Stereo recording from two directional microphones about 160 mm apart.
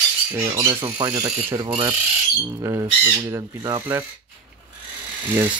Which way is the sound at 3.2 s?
20° right (ahead or behind).